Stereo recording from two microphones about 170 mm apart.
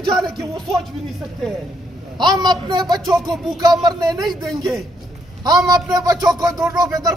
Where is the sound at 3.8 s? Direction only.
20° right (ahead or behind).